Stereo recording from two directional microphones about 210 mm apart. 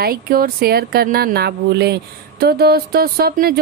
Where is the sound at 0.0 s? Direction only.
45° right (ahead or behind).